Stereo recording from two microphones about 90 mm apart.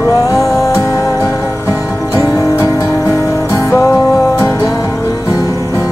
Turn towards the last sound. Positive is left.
turn(degrees=40)  # may be behind; listen again after turning